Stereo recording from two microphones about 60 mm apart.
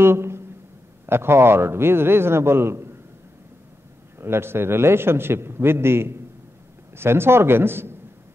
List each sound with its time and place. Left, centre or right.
0.0 s a sound: right
1.0 s a man's voice: right
4.2 s a man's voice: right